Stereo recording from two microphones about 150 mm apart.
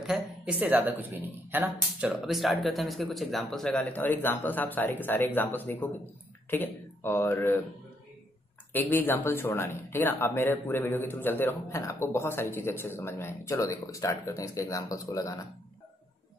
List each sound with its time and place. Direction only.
0.0 s speech: 5° right (ahead or behind); by 7.6 s 15° left (ahead or behind)
8.7 s speech: 10° left (ahead or behind)